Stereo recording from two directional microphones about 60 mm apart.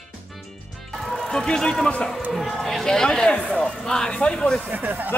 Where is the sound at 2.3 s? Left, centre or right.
Centre.